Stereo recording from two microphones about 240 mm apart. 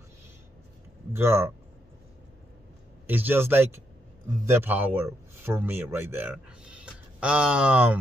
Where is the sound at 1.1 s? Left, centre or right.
Centre.